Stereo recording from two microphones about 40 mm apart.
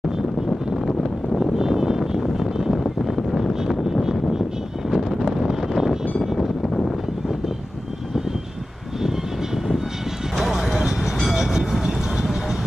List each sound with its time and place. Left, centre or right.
1.4 s a sound: centre
4.9 s vehicle: centre
10.5 s vehicle: centre
11.3 s train: centre
11.8 s vehicle: centre